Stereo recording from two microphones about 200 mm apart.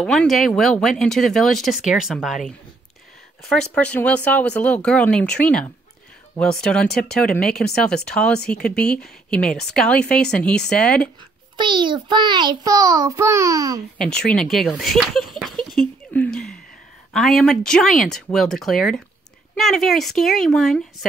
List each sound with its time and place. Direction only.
0.0 s speech: 5° left (ahead or behind)
11.5 s a child's voice: 25° right (ahead or behind)
13.9 s speech: 5° left (ahead or behind)
16.1 s a sound: 5° left (ahead or behind)
17.1 s speech: centre (ahead or behind)